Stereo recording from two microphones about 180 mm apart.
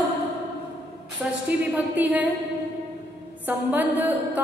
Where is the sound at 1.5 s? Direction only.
10° right (ahead or behind).